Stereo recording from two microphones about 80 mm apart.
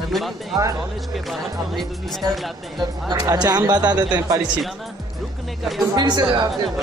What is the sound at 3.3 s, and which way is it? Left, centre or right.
Speech, right.